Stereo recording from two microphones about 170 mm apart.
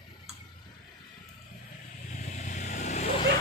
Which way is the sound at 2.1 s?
45° left (ahead or behind).